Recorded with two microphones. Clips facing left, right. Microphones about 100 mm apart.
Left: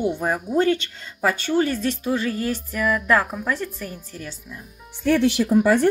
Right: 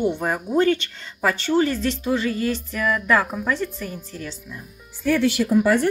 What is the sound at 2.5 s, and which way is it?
Speech, 10° left (ahead or behind).